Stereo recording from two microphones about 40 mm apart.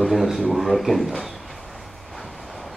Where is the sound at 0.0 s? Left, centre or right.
Centre.